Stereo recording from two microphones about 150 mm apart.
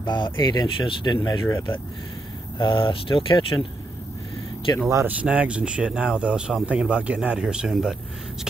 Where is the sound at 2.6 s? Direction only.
35° left (ahead or behind).